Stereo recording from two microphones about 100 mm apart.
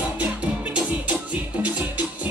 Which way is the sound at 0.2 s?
15° right (ahead or behind).